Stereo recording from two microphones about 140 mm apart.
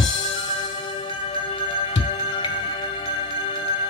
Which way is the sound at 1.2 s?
35° left (ahead or behind).